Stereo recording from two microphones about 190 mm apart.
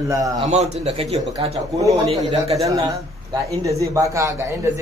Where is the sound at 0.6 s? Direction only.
35° right (ahead or behind).